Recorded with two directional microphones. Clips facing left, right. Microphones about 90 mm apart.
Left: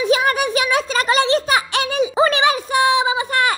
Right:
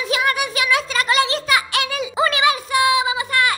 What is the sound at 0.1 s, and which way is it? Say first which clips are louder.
Music: left 2 dB; 30° left (ahead or behind).